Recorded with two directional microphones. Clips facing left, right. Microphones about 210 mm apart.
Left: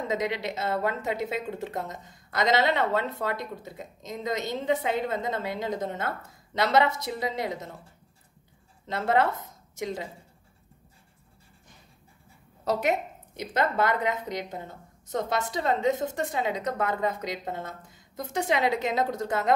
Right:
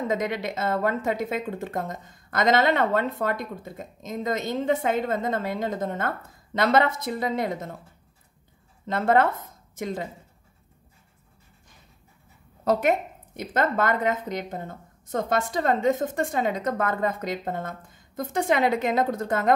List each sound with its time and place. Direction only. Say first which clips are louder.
0.1 s speech: right 2 dB; 50° right (ahead or behind)
8.8 s speech: right 3 dB; 50° right (ahead or behind)
13.4 s speech: right 2 dB; 50° right (ahead or behind)